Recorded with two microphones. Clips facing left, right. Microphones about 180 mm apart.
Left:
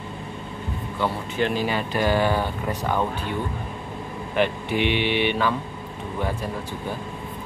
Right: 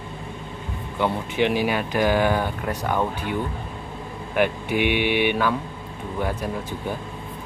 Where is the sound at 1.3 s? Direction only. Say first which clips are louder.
Right 3 dB; 70° right (ahead or behind).